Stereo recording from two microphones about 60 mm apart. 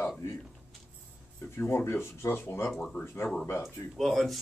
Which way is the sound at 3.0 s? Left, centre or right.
Left.